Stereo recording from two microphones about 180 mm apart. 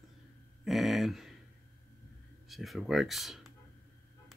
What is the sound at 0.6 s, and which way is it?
Speech, centre (ahead or behind).